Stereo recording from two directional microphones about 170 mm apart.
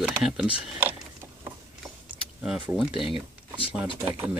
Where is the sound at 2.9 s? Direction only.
30° left (ahead or behind).